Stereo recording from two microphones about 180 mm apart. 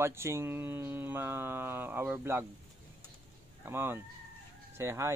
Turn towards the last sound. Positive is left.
turn(degrees=-15)  # may be behind; listen again after turning